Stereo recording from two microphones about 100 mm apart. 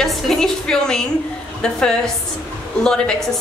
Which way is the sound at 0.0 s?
5° left (ahead or behind).